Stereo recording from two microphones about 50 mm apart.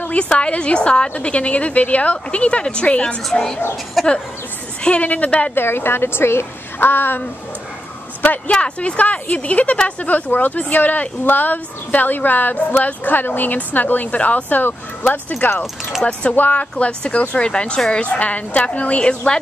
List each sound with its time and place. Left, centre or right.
0.0 s a woman's voice: left
3.3 s speech: centre
4.0 s speech: centre
5.0 s a woman's voice: left
5.5 s a woman's voice: left
8.5 s a woman's voice: left
15.6 s speech: centre
16.1 s a woman's voice: left